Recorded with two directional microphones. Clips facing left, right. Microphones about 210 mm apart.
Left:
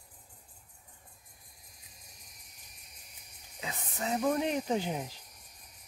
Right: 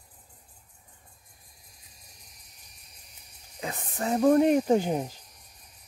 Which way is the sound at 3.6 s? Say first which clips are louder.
Right 5 dB; 50° right (ahead or behind).